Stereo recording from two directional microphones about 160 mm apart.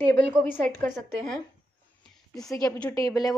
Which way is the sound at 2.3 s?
Centre (ahead or behind).